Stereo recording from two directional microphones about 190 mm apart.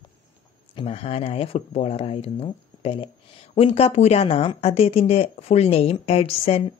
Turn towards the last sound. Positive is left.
turn(degrees=30)  # may be behind; listen again after turning